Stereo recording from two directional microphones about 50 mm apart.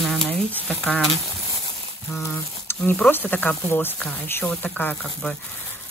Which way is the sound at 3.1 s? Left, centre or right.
Left.